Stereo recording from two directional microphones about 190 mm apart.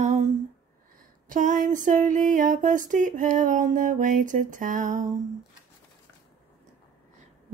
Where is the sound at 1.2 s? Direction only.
45° right (ahead or behind).